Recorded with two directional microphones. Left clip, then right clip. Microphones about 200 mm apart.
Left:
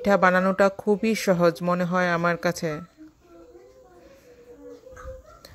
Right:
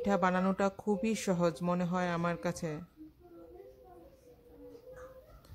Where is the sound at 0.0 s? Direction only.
20° left (ahead or behind).